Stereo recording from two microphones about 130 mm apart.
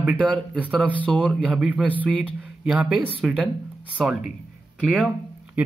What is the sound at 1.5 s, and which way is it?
A man's voice, 10° right (ahead or behind).